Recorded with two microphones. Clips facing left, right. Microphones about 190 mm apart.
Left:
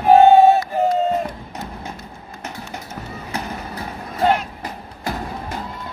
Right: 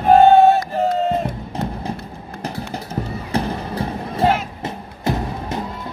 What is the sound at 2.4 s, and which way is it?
Music, 35° right (ahead or behind).